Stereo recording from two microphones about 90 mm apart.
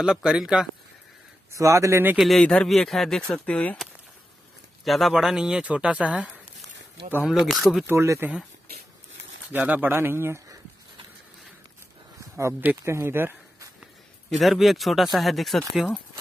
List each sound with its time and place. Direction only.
0.0 s speech: 5° right (ahead or behind)
1.5 s speech: 35° right (ahead or behind)
2.1 s speech: centre (ahead or behind)
2.4 s speech: 15° left (ahead or behind)
2.7 s speech: 5° left (ahead or behind)
4.8 s speech: centre (ahead or behind)
7.2 s speech: centre (ahead or behind)
7.8 s speech: 30° right (ahead or behind)
9.5 s speech: 20° right (ahead or behind)
12.2 s a sound: 35° right (ahead or behind)
12.8 s speech: 30° right (ahead or behind)
14.3 s speech: centre (ahead or behind)